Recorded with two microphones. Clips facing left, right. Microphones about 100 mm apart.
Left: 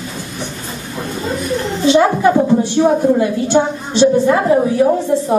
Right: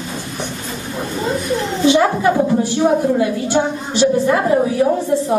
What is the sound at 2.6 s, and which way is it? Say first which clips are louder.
A woman's voice: left 2 dB; 20° left (ahead or behind).